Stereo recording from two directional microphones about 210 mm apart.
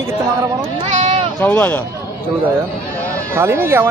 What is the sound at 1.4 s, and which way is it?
Speech, 10° left (ahead or behind).